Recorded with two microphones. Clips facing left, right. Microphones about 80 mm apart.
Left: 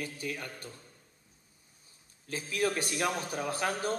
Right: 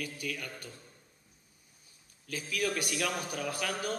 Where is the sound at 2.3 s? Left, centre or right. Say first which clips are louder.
Left 2 dB; left.